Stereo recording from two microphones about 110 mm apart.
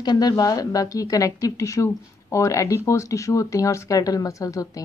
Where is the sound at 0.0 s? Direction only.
40° left (ahead or behind).